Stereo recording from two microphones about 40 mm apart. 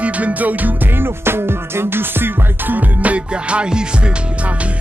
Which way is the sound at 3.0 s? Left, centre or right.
Right.